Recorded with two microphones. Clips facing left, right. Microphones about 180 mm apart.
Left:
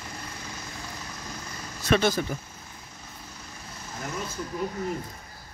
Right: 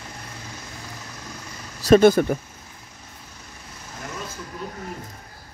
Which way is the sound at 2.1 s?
55° right (ahead or behind).